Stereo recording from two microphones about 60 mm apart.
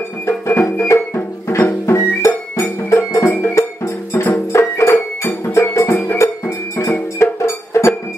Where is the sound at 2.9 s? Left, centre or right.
Left.